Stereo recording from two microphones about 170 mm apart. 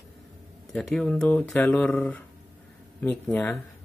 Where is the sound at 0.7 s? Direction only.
Centre (ahead or behind).